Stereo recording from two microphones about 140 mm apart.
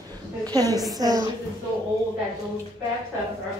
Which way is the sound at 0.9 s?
25° right (ahead or behind).